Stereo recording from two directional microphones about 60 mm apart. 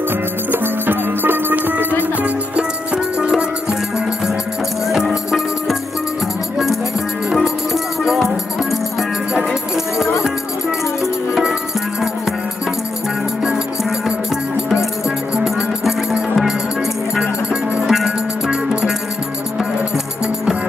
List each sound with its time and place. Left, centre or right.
0.5 s music: right
2.2 s music: centre
4.8 s music: centre
7.4 s music: centre
9.4 s music: centre
15.0 s music: centre
17.8 s music: centre